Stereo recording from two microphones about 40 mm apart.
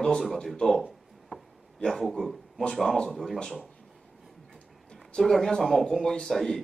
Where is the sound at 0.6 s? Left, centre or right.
Centre.